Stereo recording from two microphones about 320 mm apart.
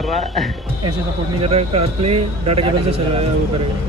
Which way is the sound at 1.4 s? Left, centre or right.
Centre.